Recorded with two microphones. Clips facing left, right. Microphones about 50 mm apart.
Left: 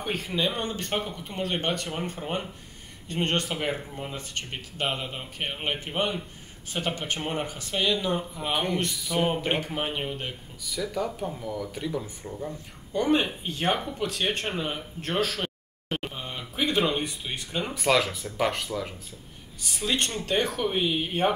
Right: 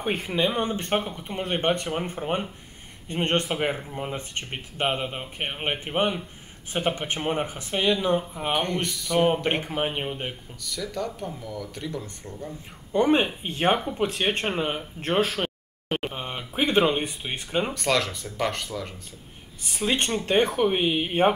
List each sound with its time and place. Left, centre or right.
0.0 s speech: right
0.5 s speech: centre
0.7 s speech: right
8.9 s speech: centre
9.6 s speech: centre
10.6 s speech: centre
12.9 s speech: right
17.7 s speech: centre
19.6 s speech: right